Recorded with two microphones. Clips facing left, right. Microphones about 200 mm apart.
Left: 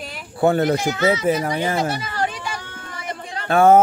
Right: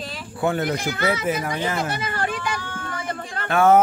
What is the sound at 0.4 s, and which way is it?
A child's voice, 35° left (ahead or behind).